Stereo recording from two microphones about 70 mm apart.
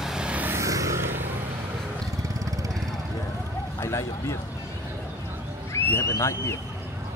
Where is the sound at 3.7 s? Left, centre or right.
Left.